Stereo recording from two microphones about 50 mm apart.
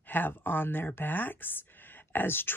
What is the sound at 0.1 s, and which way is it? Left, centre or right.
Speech, left.